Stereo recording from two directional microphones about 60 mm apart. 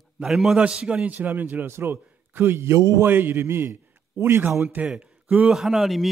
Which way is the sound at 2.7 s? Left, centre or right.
Right.